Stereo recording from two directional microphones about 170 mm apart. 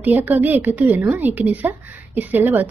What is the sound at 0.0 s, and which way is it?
Speech, 10° right (ahead or behind).